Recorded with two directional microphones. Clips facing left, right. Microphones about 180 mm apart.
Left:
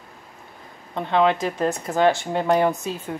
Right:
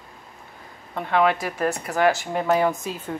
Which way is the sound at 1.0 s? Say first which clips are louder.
Left 1 dB; 20° left (ahead or behind).